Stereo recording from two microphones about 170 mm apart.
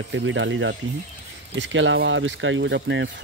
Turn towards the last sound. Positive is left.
turn(degrees=-90)